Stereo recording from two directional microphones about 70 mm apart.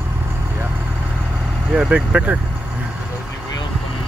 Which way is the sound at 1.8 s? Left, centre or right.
Centre.